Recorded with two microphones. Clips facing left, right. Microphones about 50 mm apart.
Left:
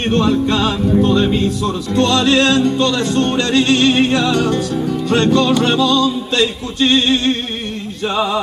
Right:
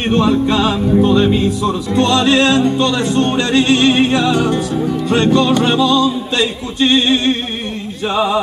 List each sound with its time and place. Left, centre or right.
0.0 s speech: centre